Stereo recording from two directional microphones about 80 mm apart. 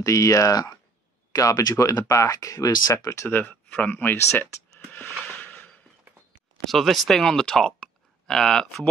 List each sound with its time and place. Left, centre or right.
0.0 s speech: left
3.3 s speech: left
5.4 s a sound: left
6.7 s speech: centre